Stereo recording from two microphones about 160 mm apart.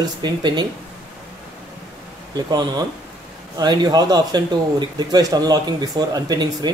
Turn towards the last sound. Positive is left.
turn(degrees=-25)  # may be behind; listen again after turning